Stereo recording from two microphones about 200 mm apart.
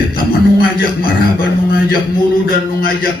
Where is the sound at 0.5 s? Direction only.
45° left (ahead or behind).